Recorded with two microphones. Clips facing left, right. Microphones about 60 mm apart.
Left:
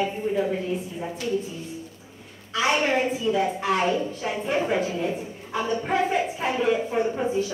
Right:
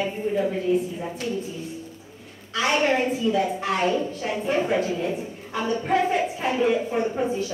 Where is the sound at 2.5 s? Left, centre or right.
Centre.